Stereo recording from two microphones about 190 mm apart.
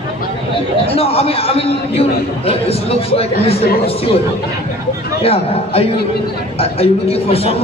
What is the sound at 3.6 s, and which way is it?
Speech, 55° left (ahead or behind).